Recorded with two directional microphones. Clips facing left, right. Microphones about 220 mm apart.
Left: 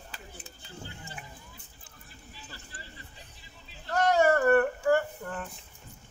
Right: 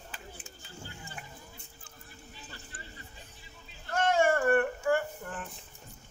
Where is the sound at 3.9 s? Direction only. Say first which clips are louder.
Left 3 dB; 40° left (ahead or behind).